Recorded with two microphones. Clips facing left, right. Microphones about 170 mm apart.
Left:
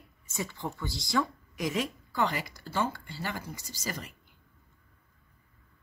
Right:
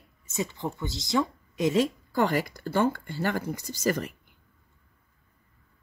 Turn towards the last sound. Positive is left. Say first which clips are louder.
# right 11 dB
turn(degrees=-55)  # may be behind; listen again after turning